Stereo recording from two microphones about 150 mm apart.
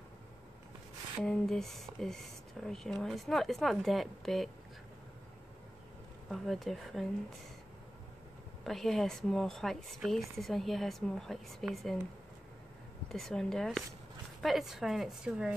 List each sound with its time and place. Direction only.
1.2 s speech: 5° left (ahead or behind)
6.3 s speech: centre (ahead or behind)
8.6 s speech: centre (ahead or behind)
13.1 s speech: 5° left (ahead or behind)